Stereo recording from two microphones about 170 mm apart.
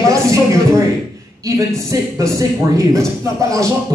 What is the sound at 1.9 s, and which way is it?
A man's voice, 20° right (ahead or behind).